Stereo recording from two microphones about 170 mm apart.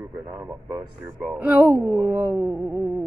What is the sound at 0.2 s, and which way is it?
Speech, 15° right (ahead or behind).